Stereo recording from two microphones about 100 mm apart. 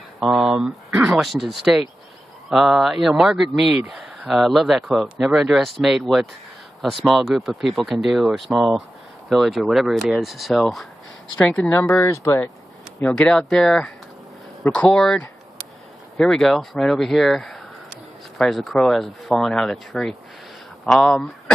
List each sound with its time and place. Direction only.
0.2 s speech: 5° right (ahead or behind); by 11.8 s 10° left (ahead or behind)
11.9 s speech: 30° left (ahead or behind)
13.0 s speech: 10° left (ahead or behind)